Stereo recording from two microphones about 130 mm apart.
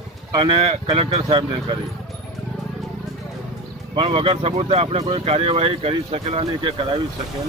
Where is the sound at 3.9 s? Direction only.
45° right (ahead or behind).